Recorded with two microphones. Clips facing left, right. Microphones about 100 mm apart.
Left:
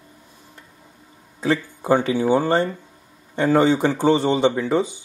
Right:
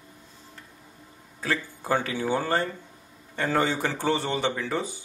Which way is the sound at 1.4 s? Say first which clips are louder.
Left 8 dB; 20° left (ahead or behind).